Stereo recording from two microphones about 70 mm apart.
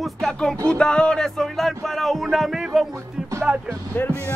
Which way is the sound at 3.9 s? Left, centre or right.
Left.